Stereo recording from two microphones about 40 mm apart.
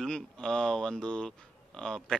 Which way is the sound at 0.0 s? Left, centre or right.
Centre.